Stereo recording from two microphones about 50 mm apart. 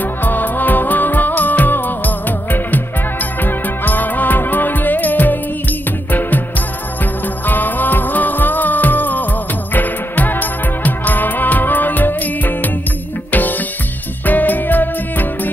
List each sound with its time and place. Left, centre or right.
0.0 s music: left
7.4 s music: left